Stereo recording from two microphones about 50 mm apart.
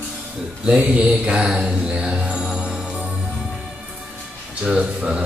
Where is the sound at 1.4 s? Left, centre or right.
Right.